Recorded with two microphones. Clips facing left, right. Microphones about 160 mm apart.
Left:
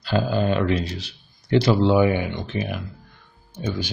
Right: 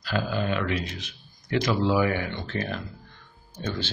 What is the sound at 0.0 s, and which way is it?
Speech, 30° left (ahead or behind).